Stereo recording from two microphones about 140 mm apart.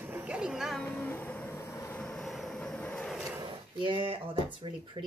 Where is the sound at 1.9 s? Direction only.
5° left (ahead or behind).